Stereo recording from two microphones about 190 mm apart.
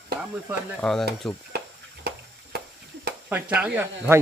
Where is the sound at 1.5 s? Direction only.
60° right (ahead or behind).